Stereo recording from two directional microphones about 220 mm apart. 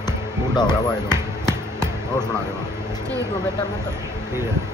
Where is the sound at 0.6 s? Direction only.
20° left (ahead or behind).